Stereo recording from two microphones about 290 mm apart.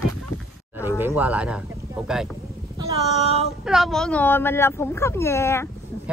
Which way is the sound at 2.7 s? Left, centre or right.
Centre.